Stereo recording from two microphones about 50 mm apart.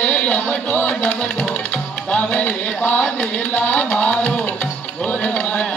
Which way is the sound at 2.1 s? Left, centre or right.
Left.